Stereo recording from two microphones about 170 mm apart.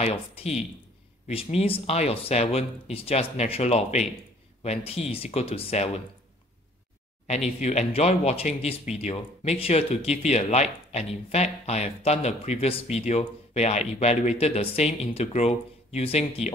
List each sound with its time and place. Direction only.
0.0 s speech: 35° left (ahead or behind)
7.6 s speech: 40° left (ahead or behind)